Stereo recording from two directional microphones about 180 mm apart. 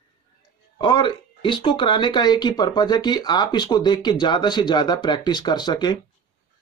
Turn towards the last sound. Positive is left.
turn(degrees=25)  # may be behind; listen again after turning